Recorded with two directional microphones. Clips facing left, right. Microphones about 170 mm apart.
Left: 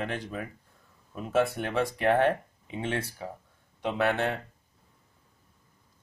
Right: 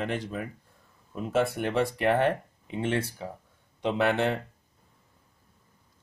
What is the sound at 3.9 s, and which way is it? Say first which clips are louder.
Speech: right 2 dB; 15° right (ahead or behind).